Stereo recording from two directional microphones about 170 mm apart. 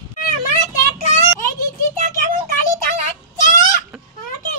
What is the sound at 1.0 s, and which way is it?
Child singing, 45° left (ahead or behind).